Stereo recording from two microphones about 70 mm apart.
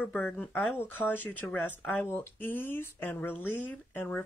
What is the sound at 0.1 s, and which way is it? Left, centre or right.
Speech, left.